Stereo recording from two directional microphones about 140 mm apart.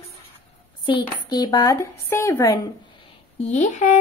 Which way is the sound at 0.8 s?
30° left (ahead or behind).